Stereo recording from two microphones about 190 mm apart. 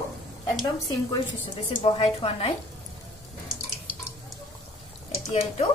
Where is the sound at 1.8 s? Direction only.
30° left (ahead or behind).